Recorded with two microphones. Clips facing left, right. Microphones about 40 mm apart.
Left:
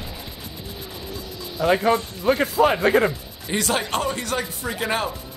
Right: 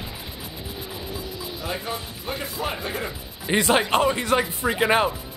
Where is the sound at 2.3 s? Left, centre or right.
Left.